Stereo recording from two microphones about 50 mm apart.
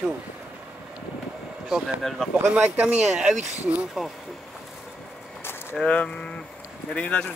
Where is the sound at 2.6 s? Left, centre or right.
Right.